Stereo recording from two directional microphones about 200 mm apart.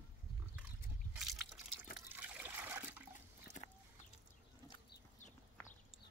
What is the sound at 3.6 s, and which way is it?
Chicken, 40° left (ahead or behind).